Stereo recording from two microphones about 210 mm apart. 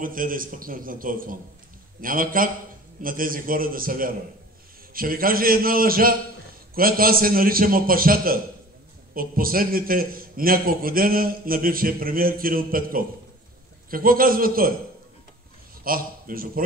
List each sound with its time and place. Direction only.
0.0 s a man's voice: 40° right (ahead or behind)
15.8 s a man's voice: 45° right (ahead or behind)